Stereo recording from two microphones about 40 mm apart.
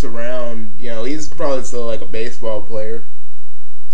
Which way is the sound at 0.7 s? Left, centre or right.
Centre.